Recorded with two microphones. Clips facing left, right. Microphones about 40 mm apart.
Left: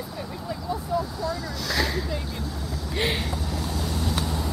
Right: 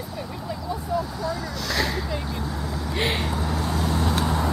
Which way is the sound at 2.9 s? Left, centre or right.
Centre.